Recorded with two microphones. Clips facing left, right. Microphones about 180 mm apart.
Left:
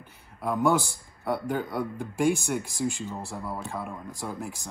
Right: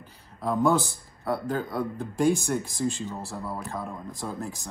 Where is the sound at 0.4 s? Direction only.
15° left (ahead or behind).